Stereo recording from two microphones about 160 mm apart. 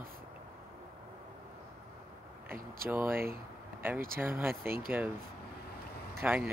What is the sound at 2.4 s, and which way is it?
Speech, 65° right (ahead or behind).